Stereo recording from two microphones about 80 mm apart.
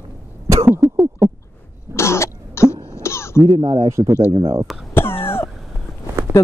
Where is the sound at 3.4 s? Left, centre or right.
Right.